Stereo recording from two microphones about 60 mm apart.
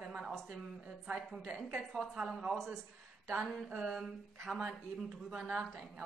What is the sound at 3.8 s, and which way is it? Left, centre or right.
Speech, centre.